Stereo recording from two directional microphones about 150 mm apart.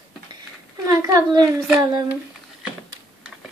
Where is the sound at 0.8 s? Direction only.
25° right (ahead or behind).